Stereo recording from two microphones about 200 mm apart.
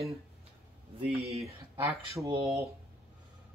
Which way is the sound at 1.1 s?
30° right (ahead or behind).